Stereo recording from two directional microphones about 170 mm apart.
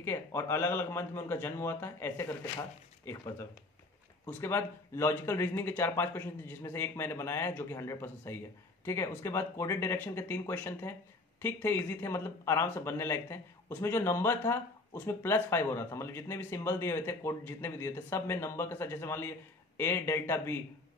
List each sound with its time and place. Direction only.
0.0 s speech: 15° left (ahead or behind)